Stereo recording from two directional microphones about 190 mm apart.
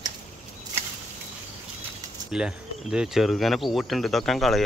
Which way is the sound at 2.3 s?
5° right (ahead or behind).